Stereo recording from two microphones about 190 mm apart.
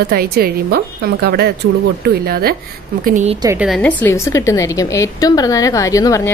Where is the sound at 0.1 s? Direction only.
55° right (ahead or behind).